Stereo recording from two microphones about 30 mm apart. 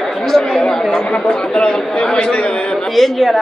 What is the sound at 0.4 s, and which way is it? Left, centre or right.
Chatter, left.